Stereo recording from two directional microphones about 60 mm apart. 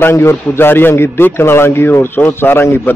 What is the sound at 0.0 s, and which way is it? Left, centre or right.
A man's voice, left.